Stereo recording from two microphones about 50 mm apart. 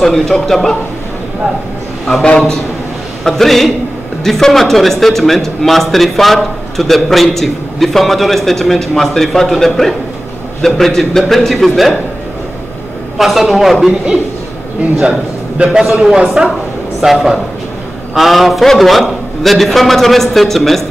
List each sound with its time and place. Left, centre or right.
0.0 s a man's voice: centre
2.2 s a man's voice: centre
3.3 s a man's voice: centre
13.2 s a man's voice: centre
15.0 s a man's voice: centre
17.0 s a man's voice: centre